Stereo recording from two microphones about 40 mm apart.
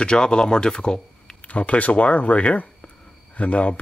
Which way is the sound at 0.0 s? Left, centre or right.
Left.